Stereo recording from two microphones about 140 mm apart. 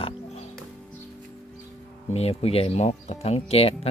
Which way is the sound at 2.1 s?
50° left (ahead or behind).